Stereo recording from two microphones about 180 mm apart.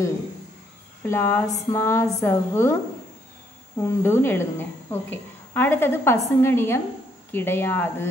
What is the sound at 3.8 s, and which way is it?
A woman's voice, 15° left (ahead or behind).